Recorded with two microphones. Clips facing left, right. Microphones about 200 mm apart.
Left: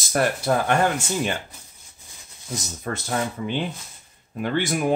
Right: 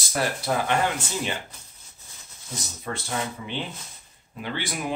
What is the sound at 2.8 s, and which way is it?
Speech, 45° left (ahead or behind).